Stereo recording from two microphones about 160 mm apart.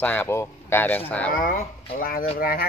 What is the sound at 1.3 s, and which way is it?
Speech, 60° left (ahead or behind).